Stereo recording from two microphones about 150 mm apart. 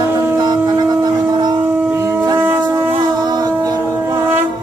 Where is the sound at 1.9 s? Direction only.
15° right (ahead or behind).